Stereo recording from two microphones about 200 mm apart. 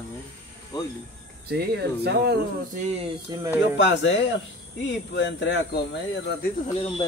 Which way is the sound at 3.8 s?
65° left (ahead or behind).